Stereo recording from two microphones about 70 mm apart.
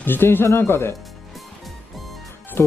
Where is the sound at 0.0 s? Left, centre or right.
Left.